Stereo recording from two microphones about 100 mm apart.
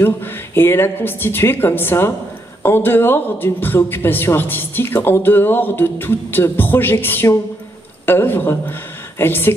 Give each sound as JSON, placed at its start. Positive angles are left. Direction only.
{"t": 0.0, "sound": "speech", "side_deg": 20}